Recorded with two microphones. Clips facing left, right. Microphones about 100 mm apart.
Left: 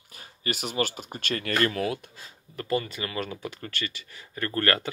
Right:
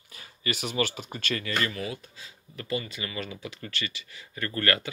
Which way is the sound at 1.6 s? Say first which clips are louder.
Left 6 dB; 70° left (ahead or behind).